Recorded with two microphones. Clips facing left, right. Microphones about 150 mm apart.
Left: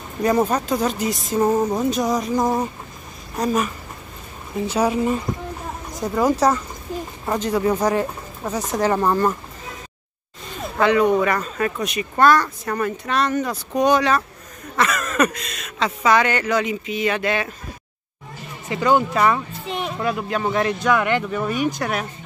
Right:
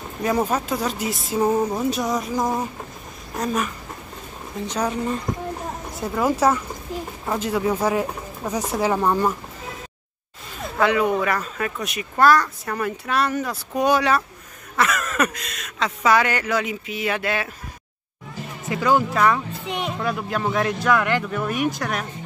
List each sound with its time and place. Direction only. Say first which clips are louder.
0.2 s speech: left 3 dB; 5° right (ahead or behind)
4.6 s speech: left 5 dB; 10° left (ahead or behind)
5.9 s speech: left 3 dB; 5° right (ahead or behind)
10.6 s speech: left 3 dB; 5° right (ahead or behind)
18.7 s speech: left 2 dB; centre (ahead or behind)
19.7 s music: left 1 dB; 20° right (ahead or behind)
20.0 s speech: left 4 dB; centre (ahead or behind)